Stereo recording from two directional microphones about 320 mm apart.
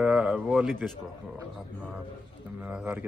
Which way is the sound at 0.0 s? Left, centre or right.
Centre.